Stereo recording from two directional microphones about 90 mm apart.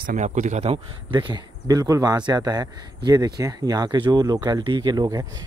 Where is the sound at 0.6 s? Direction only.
65° right (ahead or behind).